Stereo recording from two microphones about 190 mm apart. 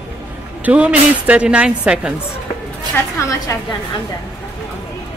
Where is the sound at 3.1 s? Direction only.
15° left (ahead or behind).